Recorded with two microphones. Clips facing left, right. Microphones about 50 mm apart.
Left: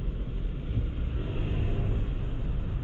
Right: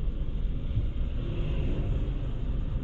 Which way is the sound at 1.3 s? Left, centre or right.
Left.